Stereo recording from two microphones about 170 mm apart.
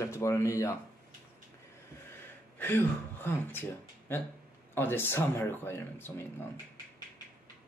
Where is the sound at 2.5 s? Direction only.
10° left (ahead or behind).